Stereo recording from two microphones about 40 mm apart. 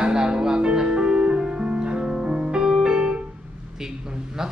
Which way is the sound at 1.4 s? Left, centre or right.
Right.